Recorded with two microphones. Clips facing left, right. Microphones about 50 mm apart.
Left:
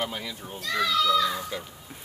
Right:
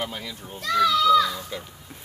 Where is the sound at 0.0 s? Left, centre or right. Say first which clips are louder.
Even; centre.